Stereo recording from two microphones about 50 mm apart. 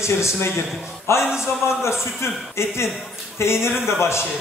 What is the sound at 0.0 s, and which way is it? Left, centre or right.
A man's voice, left.